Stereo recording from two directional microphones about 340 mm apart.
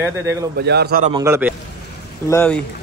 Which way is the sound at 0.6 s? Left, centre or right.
Right.